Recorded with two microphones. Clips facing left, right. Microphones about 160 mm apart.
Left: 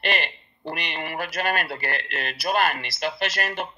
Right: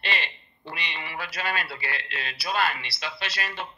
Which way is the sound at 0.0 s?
50° left (ahead or behind).